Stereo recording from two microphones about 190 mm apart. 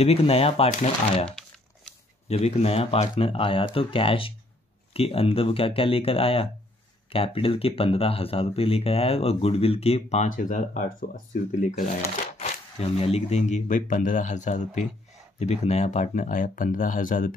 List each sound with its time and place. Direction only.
0.0 s speech: 30° left (ahead or behind)
2.2 s speech: 35° left (ahead or behind)